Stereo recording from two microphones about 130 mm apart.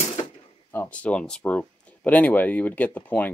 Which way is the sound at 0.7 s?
10° left (ahead or behind).